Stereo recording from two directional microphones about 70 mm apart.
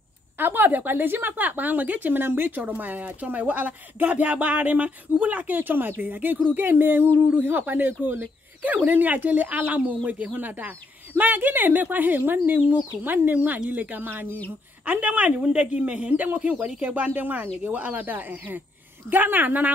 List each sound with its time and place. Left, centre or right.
0.4 s speech: right; by 16.9 s centre
16.9 s speech: right